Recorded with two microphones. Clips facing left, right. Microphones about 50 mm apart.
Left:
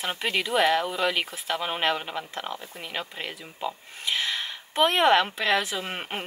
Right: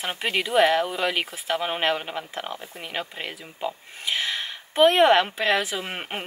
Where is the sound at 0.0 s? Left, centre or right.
Centre.